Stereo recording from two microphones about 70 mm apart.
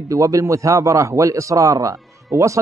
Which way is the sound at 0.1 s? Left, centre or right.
Right.